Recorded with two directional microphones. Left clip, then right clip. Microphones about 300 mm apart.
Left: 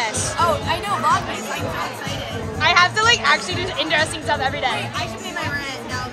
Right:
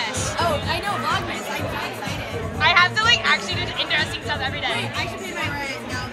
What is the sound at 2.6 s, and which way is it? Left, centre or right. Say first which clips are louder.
Children playing: left 1 dB; centre.